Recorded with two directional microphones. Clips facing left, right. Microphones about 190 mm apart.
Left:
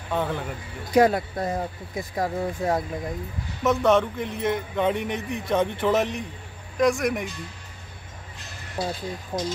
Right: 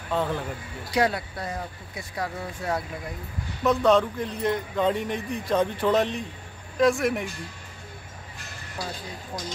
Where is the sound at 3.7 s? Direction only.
20° left (ahead or behind).